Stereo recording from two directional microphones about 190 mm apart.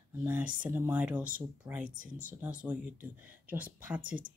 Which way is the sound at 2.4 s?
5° right (ahead or behind).